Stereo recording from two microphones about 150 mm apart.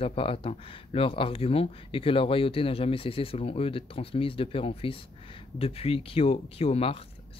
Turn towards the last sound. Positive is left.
turn(degrees=40)  # may be behind; listen again after turning